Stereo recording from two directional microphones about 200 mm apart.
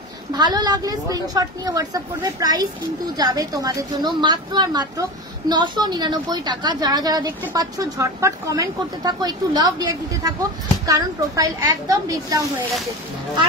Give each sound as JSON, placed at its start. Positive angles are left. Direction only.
{"t": 0.3, "sound": "a woman's voice", "side_deg": -20}